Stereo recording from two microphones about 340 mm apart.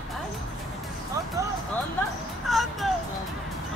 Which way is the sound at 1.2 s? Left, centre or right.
Centre.